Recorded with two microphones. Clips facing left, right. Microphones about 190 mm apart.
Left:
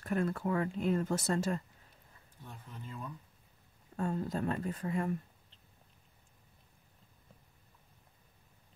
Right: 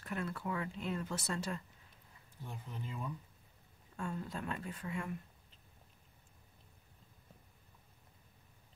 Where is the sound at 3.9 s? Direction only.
40° left (ahead or behind).